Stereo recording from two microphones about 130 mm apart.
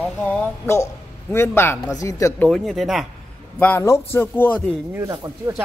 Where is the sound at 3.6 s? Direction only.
15° left (ahead or behind).